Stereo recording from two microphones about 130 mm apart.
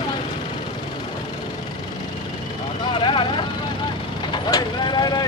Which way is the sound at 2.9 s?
40° left (ahead or behind).